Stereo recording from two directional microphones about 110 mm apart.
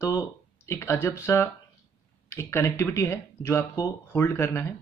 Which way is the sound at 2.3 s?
20° left (ahead or behind).